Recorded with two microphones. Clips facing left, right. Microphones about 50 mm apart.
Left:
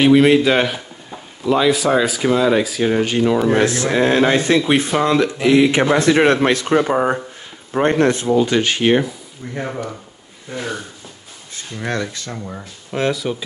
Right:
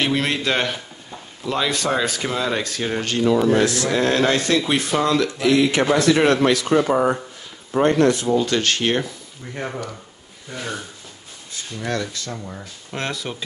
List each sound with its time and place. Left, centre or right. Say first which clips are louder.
0.0 s speech: left 10 dB; centre
3.4 s speech: left 2 dB; left
8.3 s speech: left 3 dB; centre
10.5 s speech: left 4 dB; centre
11.8 s speech: left 2 dB; left
12.9 s speech: left 8 dB; centre